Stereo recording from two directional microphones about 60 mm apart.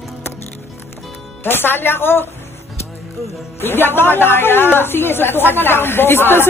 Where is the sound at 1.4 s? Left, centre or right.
Left.